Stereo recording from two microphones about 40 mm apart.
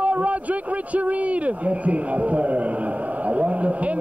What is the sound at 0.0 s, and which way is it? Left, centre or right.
A man's voice, right.